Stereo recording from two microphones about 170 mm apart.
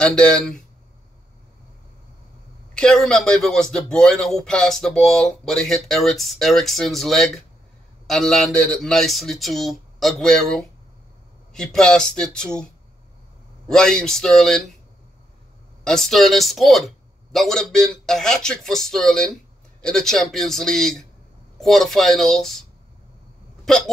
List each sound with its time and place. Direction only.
0.0 s speech: 5° left (ahead or behind)
2.8 s speech: 5° left (ahead or behind)
13.7 s speech: 5° left (ahead or behind)
15.8 s speech: 5° left (ahead or behind)